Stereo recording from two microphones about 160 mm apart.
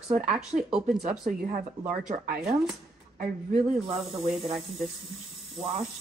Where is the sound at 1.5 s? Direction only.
55° right (ahead or behind).